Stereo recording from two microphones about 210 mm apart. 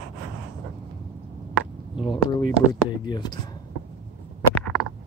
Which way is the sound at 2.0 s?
20° left (ahead or behind).